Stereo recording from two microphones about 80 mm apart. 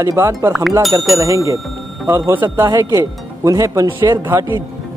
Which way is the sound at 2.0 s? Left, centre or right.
Right.